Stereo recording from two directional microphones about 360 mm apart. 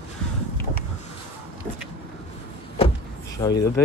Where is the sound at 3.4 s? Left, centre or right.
Centre.